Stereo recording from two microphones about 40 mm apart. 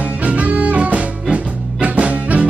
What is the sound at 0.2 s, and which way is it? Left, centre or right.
Music, right.